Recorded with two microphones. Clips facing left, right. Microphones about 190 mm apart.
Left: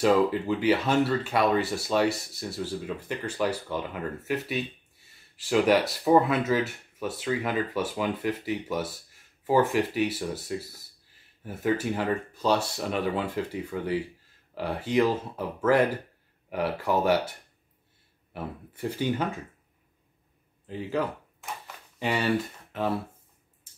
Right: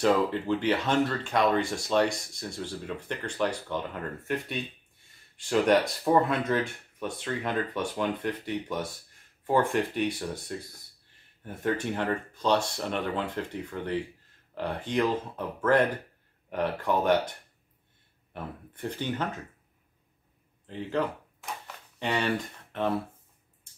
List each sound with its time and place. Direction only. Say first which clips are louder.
0.0 s speech: left 2 dB; 5° left (ahead or behind)
18.3 s speech: left 3 dB; 5° left (ahead or behind)
20.6 s a sound: left 1 dB; 5° left (ahead or behind)